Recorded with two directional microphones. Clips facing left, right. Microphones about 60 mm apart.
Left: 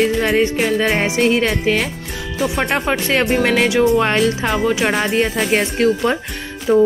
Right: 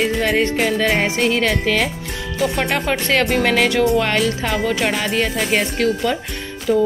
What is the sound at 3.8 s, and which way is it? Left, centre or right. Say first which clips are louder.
Speech: left 2 dB; left.